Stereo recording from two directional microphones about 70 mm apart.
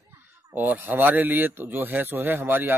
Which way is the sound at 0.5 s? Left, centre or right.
Right.